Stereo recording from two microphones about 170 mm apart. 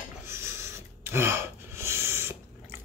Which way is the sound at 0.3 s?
15° right (ahead or behind).